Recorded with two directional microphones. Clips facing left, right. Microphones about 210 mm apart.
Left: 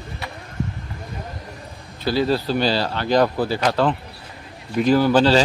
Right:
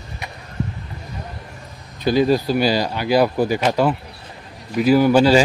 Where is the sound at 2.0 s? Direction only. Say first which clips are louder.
Right 4 dB; 15° right (ahead or behind).